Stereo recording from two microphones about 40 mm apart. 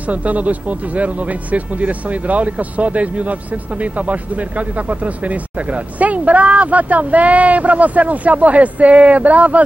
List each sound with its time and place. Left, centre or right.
0.0 s speech: right